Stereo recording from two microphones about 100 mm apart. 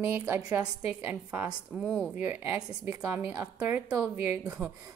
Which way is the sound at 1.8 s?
5° left (ahead or behind).